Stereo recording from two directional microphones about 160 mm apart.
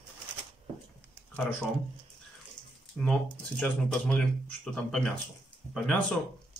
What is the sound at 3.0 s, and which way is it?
Speech, 5° left (ahead or behind).